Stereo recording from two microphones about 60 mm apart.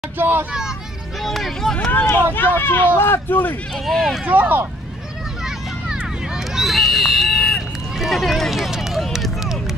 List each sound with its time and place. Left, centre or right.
0.2 s speech: right
0.5 s vehicle: centre
1.2 s a sound: centre
2.3 s speech: left
3.7 s speech: centre
4.2 s speech: right
5.4 s a sound: centre